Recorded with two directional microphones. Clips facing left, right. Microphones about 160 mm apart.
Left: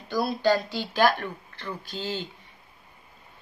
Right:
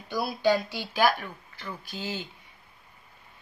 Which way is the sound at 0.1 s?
5° right (ahead or behind).